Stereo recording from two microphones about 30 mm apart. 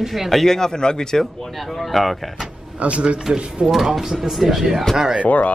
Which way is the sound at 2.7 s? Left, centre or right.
Right.